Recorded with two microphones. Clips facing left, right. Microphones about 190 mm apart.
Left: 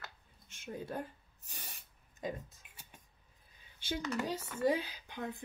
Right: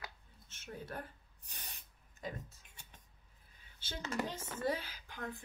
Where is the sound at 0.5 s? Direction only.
15° left (ahead or behind).